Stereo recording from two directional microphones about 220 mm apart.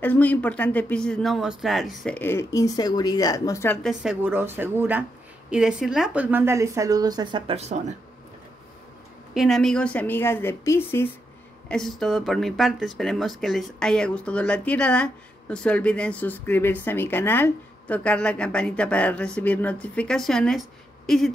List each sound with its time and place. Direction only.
0.0 s speech: 5° left (ahead or behind)
3.8 s speech: 5° right (ahead or behind); by 7.8 s 30° right (ahead or behind)
9.3 s speech: centre (ahead or behind)